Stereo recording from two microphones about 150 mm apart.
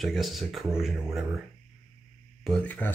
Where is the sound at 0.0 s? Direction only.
Centre (ahead or behind).